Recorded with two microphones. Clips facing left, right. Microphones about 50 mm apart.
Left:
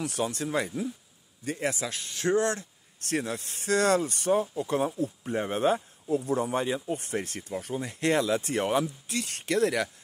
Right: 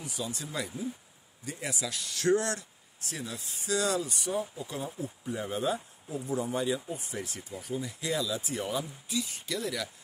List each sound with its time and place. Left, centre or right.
0.0 s speech: left
3.0 s speech: left